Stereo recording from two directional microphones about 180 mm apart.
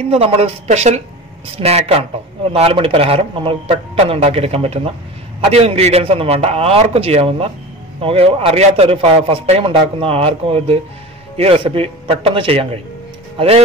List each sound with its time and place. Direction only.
0.1 s a man's voice: 35° right (ahead or behind)